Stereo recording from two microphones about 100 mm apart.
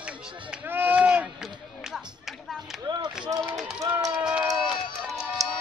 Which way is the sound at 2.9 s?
50° right (ahead or behind).